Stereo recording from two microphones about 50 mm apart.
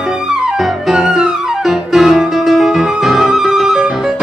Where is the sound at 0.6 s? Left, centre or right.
Centre.